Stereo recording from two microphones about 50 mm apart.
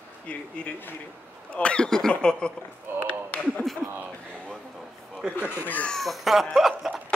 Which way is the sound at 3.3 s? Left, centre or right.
Left.